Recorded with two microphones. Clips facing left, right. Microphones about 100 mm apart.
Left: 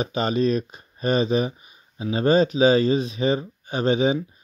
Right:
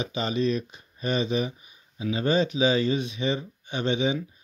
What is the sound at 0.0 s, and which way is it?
Speech, 45° left (ahead or behind).